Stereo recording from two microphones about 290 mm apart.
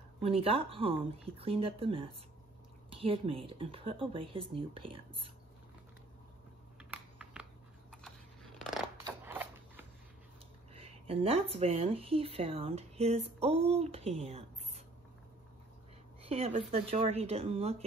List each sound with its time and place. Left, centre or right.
0.2 s speech: centre
6.8 s typing: centre
8.5 s scissors: centre
9.0 s a sound: centre
10.7 s speech: centre
16.2 s speech: right